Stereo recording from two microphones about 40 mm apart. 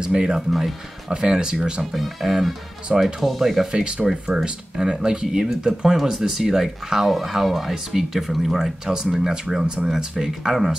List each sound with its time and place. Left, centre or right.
0.0 s speech: right
0.5 s speech: centre
1.1 s speech: centre
1.8 s speech: centre
3.7 s speech: centre